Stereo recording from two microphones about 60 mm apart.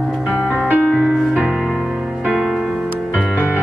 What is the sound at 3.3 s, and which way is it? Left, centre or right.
Music, left.